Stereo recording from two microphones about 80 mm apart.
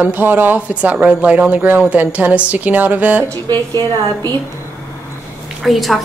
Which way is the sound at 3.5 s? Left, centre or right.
Right.